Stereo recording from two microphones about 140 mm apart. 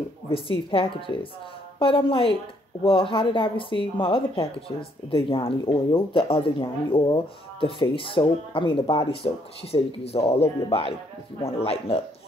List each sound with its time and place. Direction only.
0.3 s speech: 40° left (ahead or behind)